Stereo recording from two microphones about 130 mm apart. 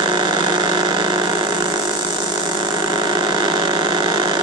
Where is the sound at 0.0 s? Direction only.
35° right (ahead or behind).